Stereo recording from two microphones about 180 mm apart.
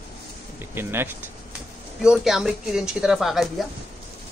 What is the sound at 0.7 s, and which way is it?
Speech, 15° right (ahead or behind).